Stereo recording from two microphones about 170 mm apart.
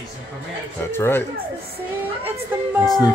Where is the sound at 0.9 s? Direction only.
15° left (ahead or behind).